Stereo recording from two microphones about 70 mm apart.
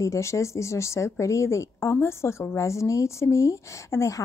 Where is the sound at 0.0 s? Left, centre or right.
Left.